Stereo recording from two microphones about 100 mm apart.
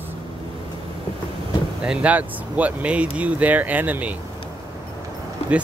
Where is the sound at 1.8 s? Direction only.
10° right (ahead or behind).